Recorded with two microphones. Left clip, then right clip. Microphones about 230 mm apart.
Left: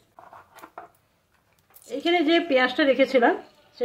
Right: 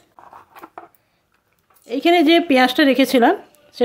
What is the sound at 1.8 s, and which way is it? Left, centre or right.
Speech, right.